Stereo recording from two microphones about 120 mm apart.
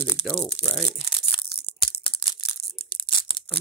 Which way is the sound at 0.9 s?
45° left (ahead or behind).